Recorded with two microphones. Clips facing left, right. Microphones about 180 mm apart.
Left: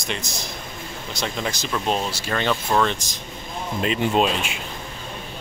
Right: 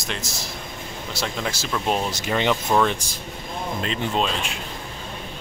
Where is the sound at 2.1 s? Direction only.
20° right (ahead or behind).